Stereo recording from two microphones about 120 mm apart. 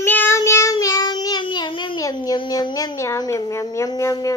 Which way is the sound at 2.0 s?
30° left (ahead or behind).